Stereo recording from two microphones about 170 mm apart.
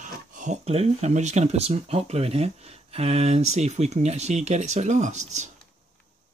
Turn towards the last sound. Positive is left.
turn(degrees=-40)  # may be behind; listen again after turning